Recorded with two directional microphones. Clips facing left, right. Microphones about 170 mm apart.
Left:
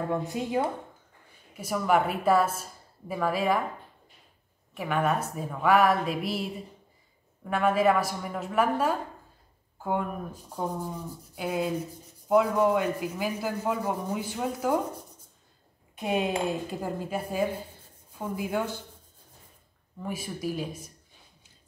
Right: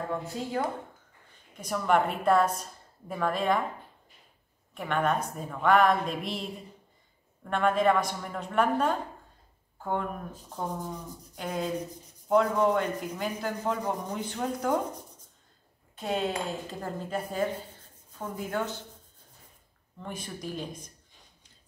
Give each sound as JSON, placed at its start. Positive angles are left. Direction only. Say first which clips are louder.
{"t": 0.1, "sound": "speech", "louder": "left 4 dB", "side_deg": 15}
{"t": 1.5, "sound": "a woman's voice", "louder": "left 1 dB", "side_deg": 5}
{"t": 4.7, "sound": "a woman's voice", "louder": "left 1 dB", "side_deg": 5}
{"t": 16.0, "sound": "speech", "louder": "left 3 dB", "side_deg": 15}
{"t": 20.0, "sound": "speech", "louder": "left 5 dB", "side_deg": 5}